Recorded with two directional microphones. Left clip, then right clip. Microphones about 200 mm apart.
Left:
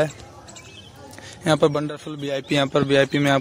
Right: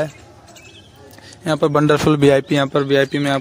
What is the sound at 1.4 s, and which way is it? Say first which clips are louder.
Speech: even; centre (ahead or behind).